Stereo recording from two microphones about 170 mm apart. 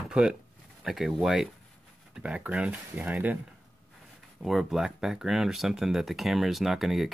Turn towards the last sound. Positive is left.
turn(degrees=0)  # may be behind; listen again after turning